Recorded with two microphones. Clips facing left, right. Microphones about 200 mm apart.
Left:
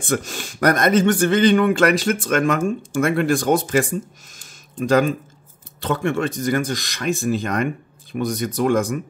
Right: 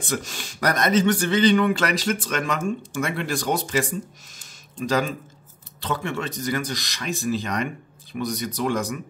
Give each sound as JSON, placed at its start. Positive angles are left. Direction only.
{"t": 0.1, "sound": "speech", "side_deg": 50}